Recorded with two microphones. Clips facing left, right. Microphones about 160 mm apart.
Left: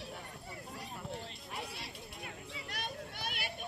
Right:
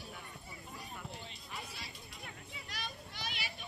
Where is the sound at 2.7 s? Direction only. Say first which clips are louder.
Left 3 dB; 55° left (ahead or behind).